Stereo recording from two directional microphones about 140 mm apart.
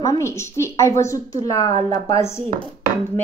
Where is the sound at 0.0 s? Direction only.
20° left (ahead or behind).